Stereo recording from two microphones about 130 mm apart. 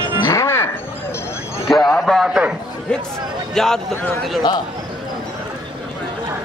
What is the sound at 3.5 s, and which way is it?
Speech, 5° left (ahead or behind).